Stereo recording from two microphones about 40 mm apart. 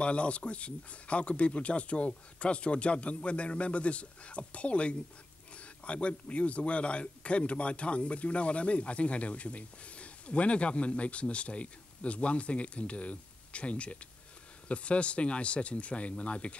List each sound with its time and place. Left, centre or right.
0.0 s speech: left